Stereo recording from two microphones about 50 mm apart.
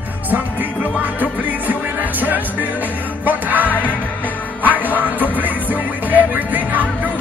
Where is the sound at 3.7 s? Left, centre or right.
Left.